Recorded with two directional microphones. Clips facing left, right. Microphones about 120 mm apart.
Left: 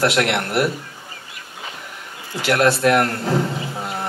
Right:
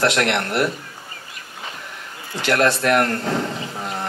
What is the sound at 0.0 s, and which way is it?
Speech, 15° left (ahead or behind).